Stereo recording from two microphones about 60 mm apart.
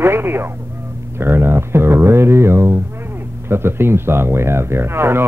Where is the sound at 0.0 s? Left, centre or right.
Right.